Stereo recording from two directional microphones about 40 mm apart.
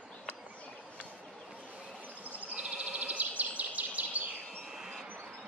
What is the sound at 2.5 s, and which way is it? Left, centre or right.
Bird vocalization, right.